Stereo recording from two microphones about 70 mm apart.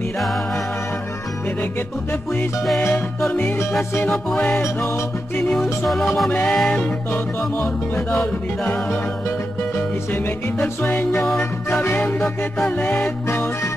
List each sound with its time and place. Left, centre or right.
3.3 s music: left
4.6 s music: left
5.6 s music: centre
6.3 s music: centre
6.8 s music: left
10.6 s music: left
11.1 s music: centre
11.8 s music: left